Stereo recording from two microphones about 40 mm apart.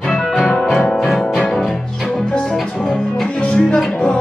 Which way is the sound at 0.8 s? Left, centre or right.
Centre.